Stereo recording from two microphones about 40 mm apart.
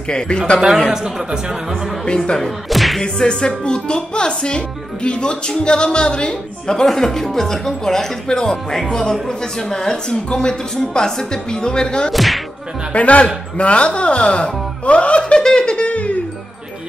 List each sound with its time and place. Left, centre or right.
0.7 s speech: centre
2.0 s speech: left
2.7 s music: centre
3.0 s speech: centre
6.9 s a woman's voice: centre
12.1 s whack: centre
12.9 s a man's voice: left
15.4 s giggle: centre
15.9 s music: left